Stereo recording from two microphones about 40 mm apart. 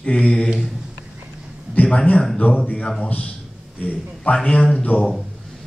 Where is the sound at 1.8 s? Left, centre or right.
Left.